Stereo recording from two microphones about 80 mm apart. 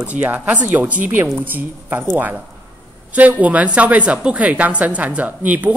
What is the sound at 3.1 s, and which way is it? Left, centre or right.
A woman's voice, centre.